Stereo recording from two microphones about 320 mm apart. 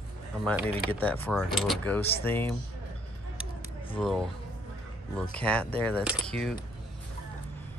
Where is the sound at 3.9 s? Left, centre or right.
Centre.